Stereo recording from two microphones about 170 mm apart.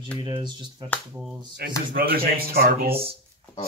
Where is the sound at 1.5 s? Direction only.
60° right (ahead or behind).